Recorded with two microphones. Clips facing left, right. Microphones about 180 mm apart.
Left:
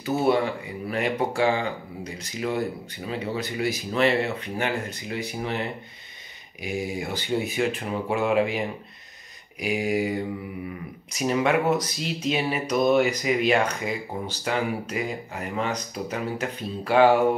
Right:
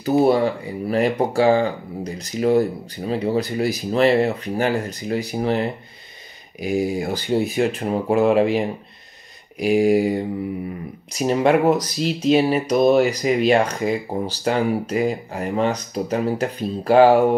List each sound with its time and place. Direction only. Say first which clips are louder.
0.0 s speech: right 6 dB; 35° right (ahead or behind)